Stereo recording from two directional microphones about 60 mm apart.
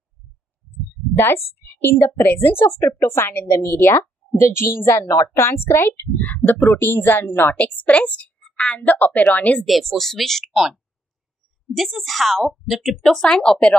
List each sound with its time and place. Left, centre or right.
1.1 s a woman's voice: left
7.5 s a woman's voice: left
9.7 s a woman's voice: centre